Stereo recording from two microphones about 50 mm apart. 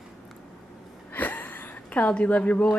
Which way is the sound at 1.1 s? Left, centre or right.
Left.